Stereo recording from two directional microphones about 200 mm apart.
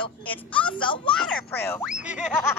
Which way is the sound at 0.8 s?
25° left (ahead or behind).